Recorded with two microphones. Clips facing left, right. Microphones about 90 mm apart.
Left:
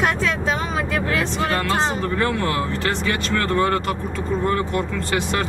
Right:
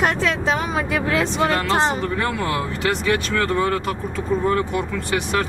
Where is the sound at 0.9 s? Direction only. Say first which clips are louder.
Right 3 dB; 15° right (ahead or behind).